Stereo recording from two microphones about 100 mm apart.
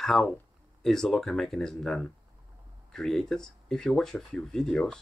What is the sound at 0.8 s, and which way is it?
Speech, 5° left (ahead or behind).